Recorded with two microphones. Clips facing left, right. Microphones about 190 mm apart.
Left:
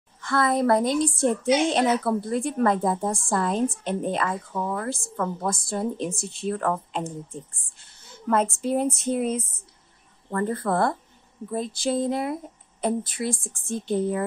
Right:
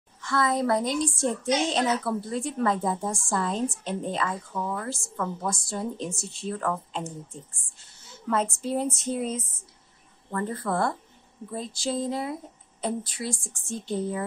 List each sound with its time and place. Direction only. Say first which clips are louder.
0.2 s a woman's voice: left 3 dB; 55° left (ahead or behind)
8.3 s a woman's voice: left 4 dB; 55° left (ahead or behind)